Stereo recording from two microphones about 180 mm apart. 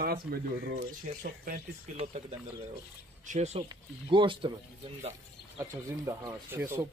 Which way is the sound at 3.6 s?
25° right (ahead or behind).